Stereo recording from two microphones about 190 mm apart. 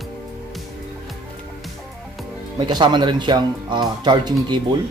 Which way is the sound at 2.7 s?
20° right (ahead or behind).